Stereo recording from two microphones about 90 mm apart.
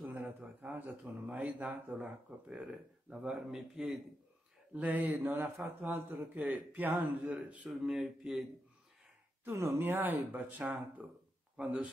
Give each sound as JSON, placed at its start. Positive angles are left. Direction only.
{"t": 0.0, "sound": "a man's voice", "side_deg": -20}
{"t": 7.6, "sound": "speech", "side_deg": -5}
{"t": 9.4, "sound": "a man's voice", "side_deg": -30}